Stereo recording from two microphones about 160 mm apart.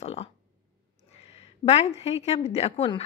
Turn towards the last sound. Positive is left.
turn(degrees=35)  # may be behind; listen again after turning